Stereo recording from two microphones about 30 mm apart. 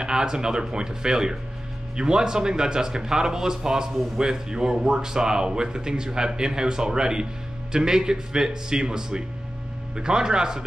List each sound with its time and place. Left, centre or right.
0.0 s speech: right